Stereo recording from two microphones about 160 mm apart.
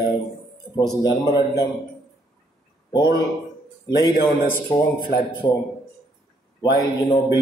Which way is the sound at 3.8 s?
25° left (ahead or behind).